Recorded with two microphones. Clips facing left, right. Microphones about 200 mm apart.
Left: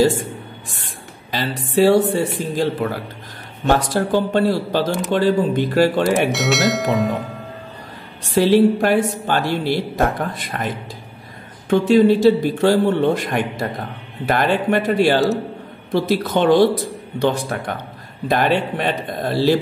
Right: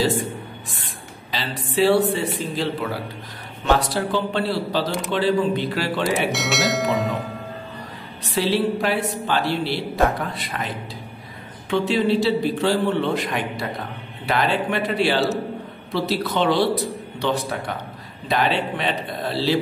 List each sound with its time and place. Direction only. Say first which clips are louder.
1.3 s a man's voice: left 5 dB; 45° left (ahead or behind)
6.0 s speech: left 5 dB; centre (ahead or behind)
8.2 s a man's voice: left 8 dB; 50° left (ahead or behind)
11.7 s a man's voice: left 7 dB; 45° left (ahead or behind)